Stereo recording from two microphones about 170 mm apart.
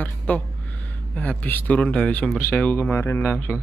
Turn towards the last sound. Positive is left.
turn(degrees=15)  # may be behind; listen again after turning